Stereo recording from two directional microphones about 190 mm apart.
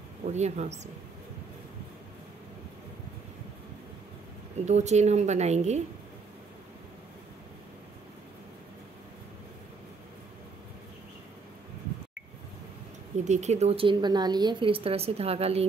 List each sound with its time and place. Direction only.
0.2 s a woman's voice: 35° right (ahead or behind)
4.6 s a woman's voice: 35° right (ahead or behind)
13.2 s a woman's voice: 35° right (ahead or behind)